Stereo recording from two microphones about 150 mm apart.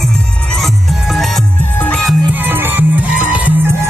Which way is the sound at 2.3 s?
15° right (ahead or behind).